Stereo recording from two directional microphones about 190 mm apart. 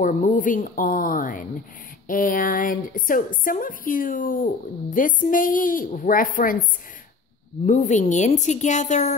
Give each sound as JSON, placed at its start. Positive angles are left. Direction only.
{"t": 0.0, "sound": "a woman's voice", "side_deg": 40}
{"t": 7.6, "sound": "a woman's voice", "side_deg": 40}